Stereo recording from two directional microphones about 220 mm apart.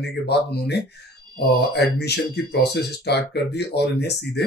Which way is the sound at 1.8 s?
45° left (ahead or behind).